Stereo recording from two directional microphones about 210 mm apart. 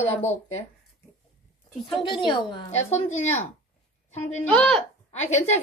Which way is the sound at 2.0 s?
20° left (ahead or behind).